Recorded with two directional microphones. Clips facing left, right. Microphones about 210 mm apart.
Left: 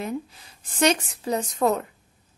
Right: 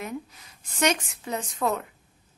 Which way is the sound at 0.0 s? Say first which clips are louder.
Left 4 dB; 30° left (ahead or behind).